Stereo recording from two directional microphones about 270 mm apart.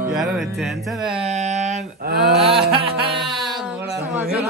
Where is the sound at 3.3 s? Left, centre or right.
Centre.